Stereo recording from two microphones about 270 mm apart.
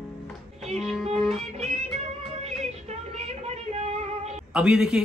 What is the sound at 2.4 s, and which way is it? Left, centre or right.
Music, right.